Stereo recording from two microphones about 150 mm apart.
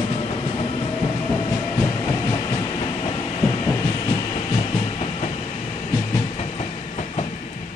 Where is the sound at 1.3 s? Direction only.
25° left (ahead or behind).